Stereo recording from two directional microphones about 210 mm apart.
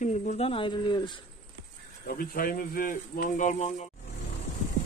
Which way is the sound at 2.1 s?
45° left (ahead or behind).